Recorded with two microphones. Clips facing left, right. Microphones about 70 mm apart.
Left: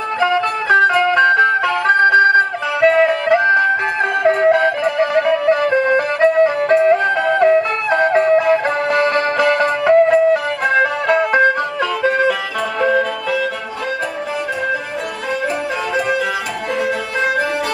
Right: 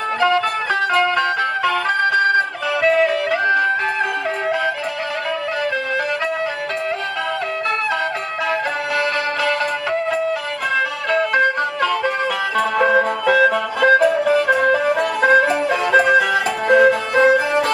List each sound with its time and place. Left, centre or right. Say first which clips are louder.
0.2 s music: left 1 dB; centre
4.3 s music: left 7 dB; left